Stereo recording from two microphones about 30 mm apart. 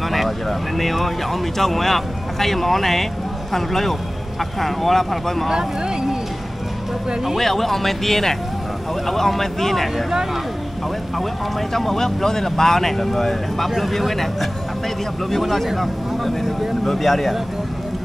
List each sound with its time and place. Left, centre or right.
0.1 s speech: centre
5.5 s speech: centre
7.3 s speech: centre
11.7 s speech: centre
16.8 s speech: centre